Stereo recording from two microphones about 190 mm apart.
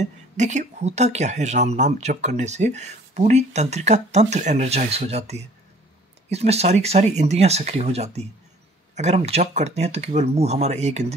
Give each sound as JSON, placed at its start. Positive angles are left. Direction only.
{"t": 0.0, "sound": "speech", "side_deg": -40}